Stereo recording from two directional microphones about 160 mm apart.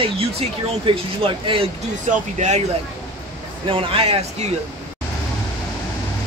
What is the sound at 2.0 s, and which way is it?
Speech, 50° right (ahead or behind).